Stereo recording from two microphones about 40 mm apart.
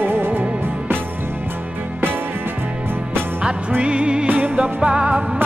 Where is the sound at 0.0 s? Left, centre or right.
Right.